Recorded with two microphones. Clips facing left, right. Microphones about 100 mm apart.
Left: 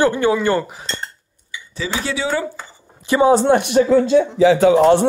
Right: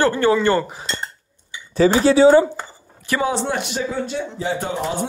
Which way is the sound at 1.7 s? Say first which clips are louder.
Right 10 dB; 45° right (ahead or behind).